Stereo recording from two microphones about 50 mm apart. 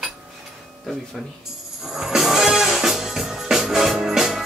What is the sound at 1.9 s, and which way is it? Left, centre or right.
Music, centre.